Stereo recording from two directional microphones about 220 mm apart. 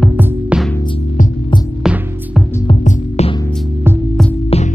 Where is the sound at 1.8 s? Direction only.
Centre (ahead or behind).